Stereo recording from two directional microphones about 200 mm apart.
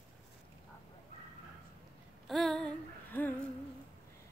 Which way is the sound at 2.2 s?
Centre (ahead or behind).